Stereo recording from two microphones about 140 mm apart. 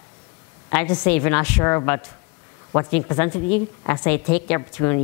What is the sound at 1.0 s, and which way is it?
A woman's voice, 15° left (ahead or behind).